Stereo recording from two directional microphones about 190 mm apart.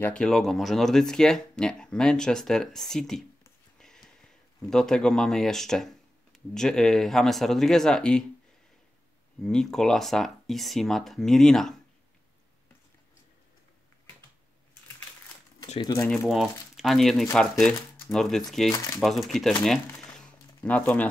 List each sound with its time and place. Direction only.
0.0 s speech: 5° left (ahead or behind)
3.8 s a sound: centre (ahead or behind)
4.6 s speech: 5° left (ahead or behind)
9.4 s speech: 5° left (ahead or behind)
15.8 s speech: 20° left (ahead or behind)
16.1 s speech: centre (ahead or behind)
18.7 s speech: 15° left (ahead or behind)
19.2 s speech: centre (ahead or behind)
20.2 s a sound: 10° left (ahead or behind)